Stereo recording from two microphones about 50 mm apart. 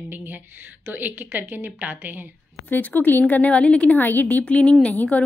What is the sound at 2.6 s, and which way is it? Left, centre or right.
Speech, left.